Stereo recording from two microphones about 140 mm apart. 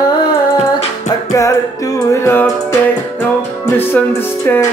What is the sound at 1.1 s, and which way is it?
Music, 25° left (ahead or behind).